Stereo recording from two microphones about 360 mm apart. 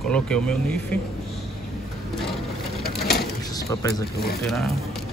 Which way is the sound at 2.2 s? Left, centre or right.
Centre.